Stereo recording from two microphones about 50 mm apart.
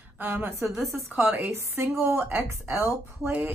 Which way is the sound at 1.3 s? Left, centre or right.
Right.